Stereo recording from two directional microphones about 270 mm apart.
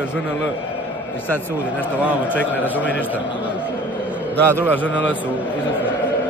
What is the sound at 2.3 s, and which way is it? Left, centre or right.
Speech, centre.